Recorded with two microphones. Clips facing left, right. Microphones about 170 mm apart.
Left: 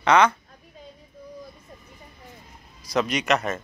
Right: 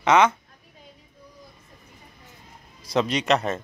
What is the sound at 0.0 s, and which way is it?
Speech, 20° right (ahead or behind).